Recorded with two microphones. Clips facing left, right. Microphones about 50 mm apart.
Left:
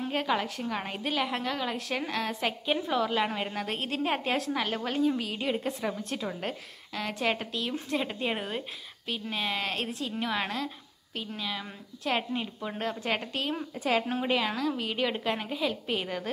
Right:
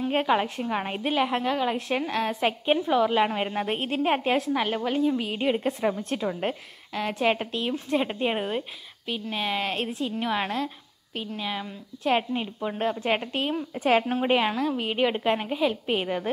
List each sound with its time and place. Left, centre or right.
0.1 s a woman's voice: right; by 5.2 s centre
5.2 s a woman's voice: right
13.7 s a woman's voice: right